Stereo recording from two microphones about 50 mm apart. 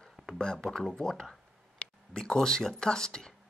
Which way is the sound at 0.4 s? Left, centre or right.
Centre.